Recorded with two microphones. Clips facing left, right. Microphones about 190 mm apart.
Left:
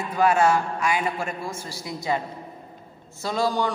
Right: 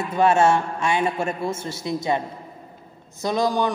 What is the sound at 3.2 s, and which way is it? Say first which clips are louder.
Speech: right 3 dB; 20° right (ahead or behind).